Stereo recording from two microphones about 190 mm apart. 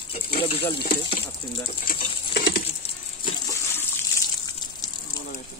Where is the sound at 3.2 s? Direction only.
20° left (ahead or behind).